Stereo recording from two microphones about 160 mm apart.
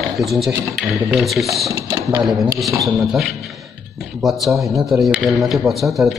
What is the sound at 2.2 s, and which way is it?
Speech, centre (ahead or behind).